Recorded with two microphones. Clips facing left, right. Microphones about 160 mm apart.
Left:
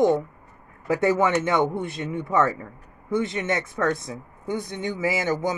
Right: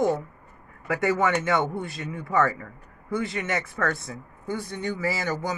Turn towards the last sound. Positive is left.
turn(degrees=20)  # may be behind; listen again after turning